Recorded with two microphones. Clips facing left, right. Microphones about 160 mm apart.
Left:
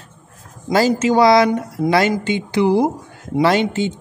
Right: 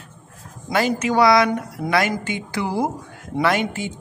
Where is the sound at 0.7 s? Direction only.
30° left (ahead or behind).